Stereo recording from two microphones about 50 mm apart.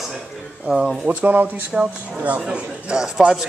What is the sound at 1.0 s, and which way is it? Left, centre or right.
A man's voice, right.